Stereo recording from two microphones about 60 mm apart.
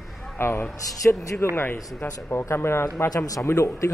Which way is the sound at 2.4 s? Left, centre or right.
Left.